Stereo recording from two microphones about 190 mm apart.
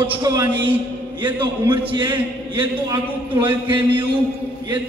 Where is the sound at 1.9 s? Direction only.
25° right (ahead or behind).